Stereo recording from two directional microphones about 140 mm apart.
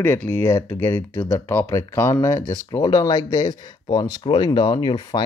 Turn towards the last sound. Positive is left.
turn(degrees=30)  # may be behind; listen again after turning